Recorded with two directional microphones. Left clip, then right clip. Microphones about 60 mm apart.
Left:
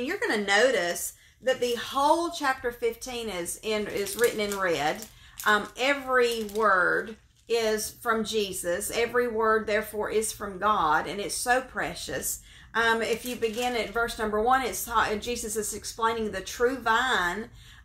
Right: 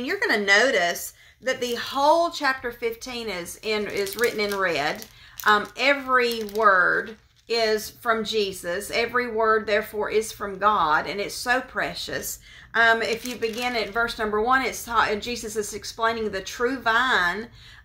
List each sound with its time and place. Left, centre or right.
0.0 s speech: right